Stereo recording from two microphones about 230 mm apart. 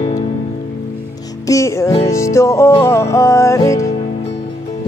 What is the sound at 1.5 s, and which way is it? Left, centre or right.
Music, centre.